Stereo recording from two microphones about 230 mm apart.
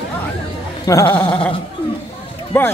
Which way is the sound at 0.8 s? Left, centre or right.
Centre.